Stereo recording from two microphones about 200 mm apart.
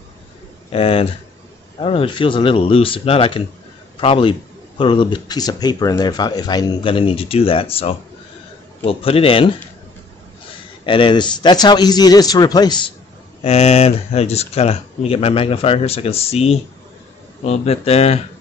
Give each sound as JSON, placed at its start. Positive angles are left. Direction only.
{"t": 0.7, "sound": "a man's voice", "side_deg": 30}
{"t": 10.9, "sound": "a man's voice", "side_deg": 25}